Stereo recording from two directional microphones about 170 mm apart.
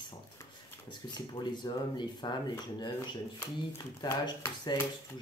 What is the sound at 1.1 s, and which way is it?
Speech, 25° left (ahead or behind).